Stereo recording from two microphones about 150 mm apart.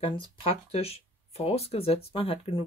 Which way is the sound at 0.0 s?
35° left (ahead or behind).